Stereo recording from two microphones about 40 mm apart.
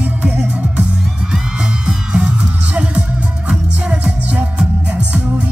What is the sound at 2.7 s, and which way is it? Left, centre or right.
Music, right.